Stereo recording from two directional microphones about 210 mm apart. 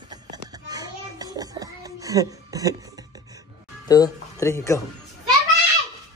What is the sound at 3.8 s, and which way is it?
Speech, 20° left (ahead or behind).